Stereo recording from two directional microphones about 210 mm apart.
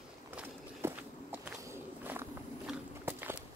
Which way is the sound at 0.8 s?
10° right (ahead or behind).